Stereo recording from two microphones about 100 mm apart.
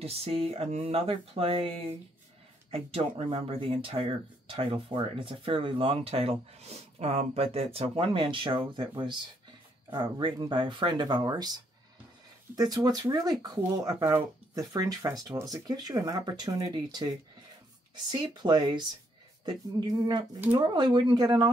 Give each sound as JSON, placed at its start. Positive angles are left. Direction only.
{"t": 0.0, "sound": "speech", "side_deg": -90}
{"t": 2.7, "sound": "speech", "side_deg": -75}
{"t": 18.1, "sound": "speech", "side_deg": -45}